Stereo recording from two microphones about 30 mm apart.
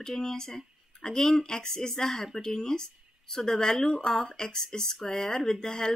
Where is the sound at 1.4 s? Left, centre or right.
Left.